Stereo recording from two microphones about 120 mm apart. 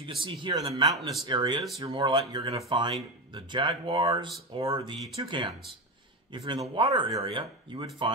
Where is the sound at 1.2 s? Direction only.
40° right (ahead or behind).